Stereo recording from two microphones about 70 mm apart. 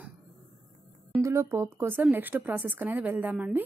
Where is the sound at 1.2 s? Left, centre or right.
Right.